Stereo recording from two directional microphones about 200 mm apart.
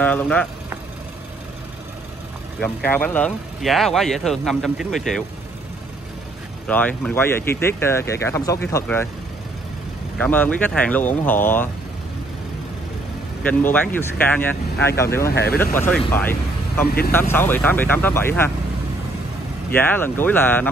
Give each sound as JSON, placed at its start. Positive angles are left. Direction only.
{"t": 0.0, "sound": "speech", "side_deg": 5}
{"t": 2.6, "sound": "speech", "side_deg": 10}
{"t": 6.7, "sound": "speech", "side_deg": 10}
{"t": 10.2, "sound": "speech", "side_deg": 10}
{"t": 13.4, "sound": "speech", "side_deg": 10}
{"t": 15.2, "sound": "speech", "side_deg": 50}
{"t": 16.1, "sound": "speech", "side_deg": 10}
{"t": 16.8, "sound": "speech", "side_deg": 50}
{"t": 17.3, "sound": "speech", "side_deg": 10}
{"t": 19.7, "sound": "speech", "side_deg": 10}